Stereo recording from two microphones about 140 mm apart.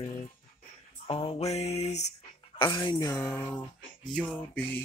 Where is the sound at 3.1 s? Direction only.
10° left (ahead or behind).